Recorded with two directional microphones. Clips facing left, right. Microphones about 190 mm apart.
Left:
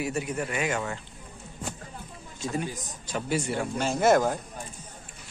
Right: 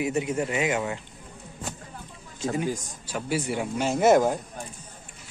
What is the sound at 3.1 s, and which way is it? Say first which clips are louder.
A man's voice: right 1 dB; 5° right (ahead or behind).